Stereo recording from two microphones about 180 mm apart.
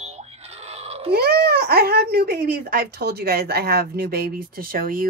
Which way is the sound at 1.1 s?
60° right (ahead or behind).